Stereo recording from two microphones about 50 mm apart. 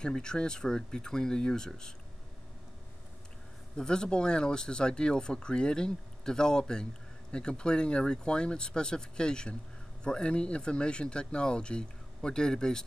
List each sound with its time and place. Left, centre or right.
0.0 s speech: centre
3.7 s speech: centre